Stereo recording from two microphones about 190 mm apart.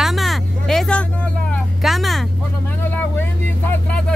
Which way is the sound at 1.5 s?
Centre (ahead or behind).